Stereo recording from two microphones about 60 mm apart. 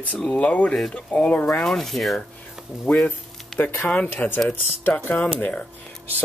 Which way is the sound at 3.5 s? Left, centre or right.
Left.